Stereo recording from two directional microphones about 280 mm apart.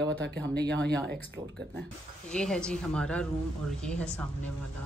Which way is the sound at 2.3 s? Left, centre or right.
Centre.